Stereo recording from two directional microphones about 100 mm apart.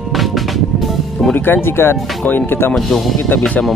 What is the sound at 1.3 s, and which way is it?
Speech, 20° left (ahead or behind).